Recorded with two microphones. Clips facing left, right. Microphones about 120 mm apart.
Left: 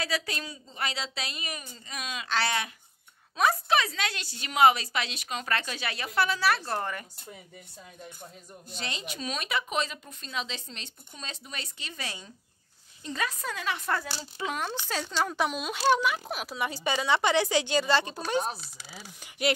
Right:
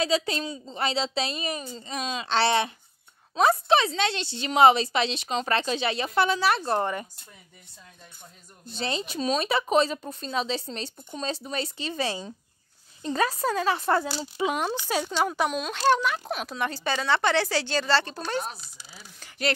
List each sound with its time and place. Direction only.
0.0 s speech: 25° right (ahead or behind)
8.6 s speech: 30° right (ahead or behind)
14.4 s speech: 15° right (ahead or behind)
15.3 s speech: centre (ahead or behind)